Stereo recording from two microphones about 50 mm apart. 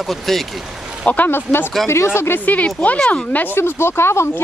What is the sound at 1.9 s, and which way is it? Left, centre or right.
Speech, left.